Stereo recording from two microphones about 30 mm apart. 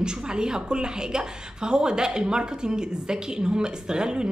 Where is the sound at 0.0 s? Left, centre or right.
Right.